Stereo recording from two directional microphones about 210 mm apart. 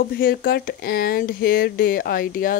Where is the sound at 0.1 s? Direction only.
45° left (ahead or behind).